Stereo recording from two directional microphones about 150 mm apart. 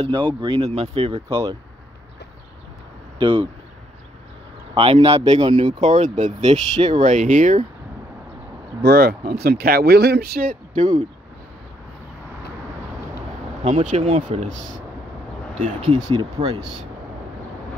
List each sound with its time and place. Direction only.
0.0 s speech: 35° right (ahead or behind)
1.3 s speech: 20° right (ahead or behind)
3.2 s speech: 35° right (ahead or behind)
4.9 s speech: 45° right (ahead or behind)
5.7 s speech: 50° right (ahead or behind); by 7.2 s 35° right (ahead or behind)
7.2 s speech: 55° right (ahead or behind)
8.8 s speech: 90° right
10.7 s speech: 50° right (ahead or behind)
13.8 s speech: 45° right (ahead or behind)
15.5 s speech: 45° right (ahead or behind)